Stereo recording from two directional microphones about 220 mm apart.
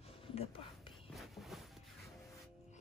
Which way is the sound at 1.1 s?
Centre (ahead or behind).